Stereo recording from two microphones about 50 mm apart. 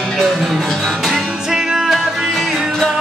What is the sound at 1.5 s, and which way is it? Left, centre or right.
Music, centre.